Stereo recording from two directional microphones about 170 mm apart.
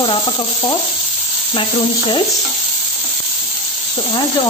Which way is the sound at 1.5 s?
30° left (ahead or behind).